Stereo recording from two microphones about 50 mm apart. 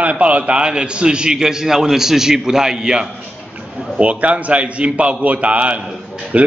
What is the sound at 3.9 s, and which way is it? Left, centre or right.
A man's voice, right.